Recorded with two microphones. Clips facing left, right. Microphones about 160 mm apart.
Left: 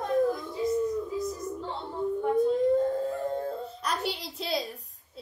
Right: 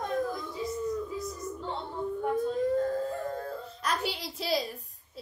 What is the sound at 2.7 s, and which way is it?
Howl, 25° left (ahead or behind).